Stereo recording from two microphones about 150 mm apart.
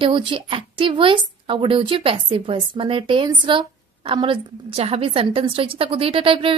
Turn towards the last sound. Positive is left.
turn(degrees=-35)  # may be behind; listen again after turning